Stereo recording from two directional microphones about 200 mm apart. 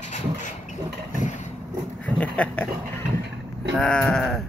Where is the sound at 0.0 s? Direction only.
35° left (ahead or behind).